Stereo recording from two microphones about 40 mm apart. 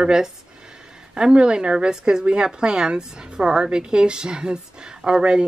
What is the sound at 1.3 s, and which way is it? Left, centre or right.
Speech, right.